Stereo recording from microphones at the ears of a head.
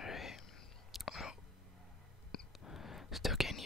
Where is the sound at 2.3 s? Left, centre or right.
Left.